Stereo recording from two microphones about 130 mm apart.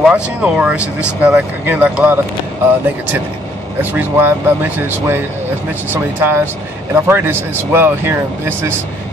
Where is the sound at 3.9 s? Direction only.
15° right (ahead or behind).